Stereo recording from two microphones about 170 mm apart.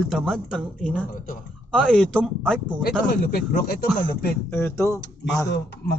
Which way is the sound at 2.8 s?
65° left (ahead or behind).